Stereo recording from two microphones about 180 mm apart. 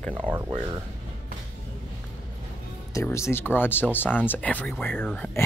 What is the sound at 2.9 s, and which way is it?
Speech, 15° left (ahead or behind).